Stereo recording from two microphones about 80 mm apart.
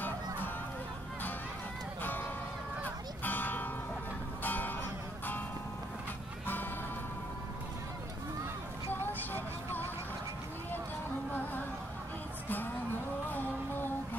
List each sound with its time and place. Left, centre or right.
2.0 s music: left
3.3 s music: left
6.4 s music: left
13.3 s music: left